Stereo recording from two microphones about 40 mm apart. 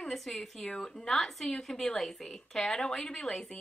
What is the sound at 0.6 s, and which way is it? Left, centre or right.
Speech, left.